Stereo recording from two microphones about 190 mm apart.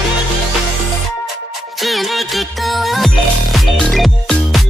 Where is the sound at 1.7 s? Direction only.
Centre (ahead or behind).